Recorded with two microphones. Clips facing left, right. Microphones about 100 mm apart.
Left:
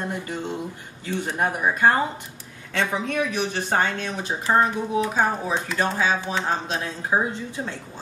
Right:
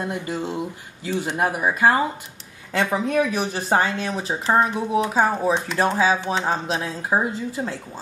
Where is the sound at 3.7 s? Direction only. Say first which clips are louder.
Right 4 dB; 5° right (ahead or behind).